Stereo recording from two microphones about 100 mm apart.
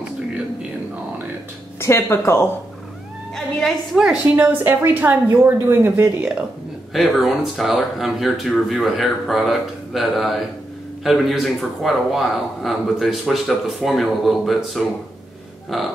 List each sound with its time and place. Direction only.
1.8 s speech: 25° left (ahead or behind)
3.3 s a woman's voice: centre (ahead or behind)
4.5 s a woman's voice: 20° right (ahead or behind)
6.9 s a man's voice: centre (ahead or behind)